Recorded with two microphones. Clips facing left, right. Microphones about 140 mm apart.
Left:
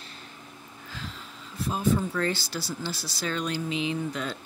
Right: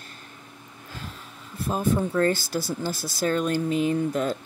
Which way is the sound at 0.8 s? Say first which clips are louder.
Right 1 dB; 50° right (ahead or behind).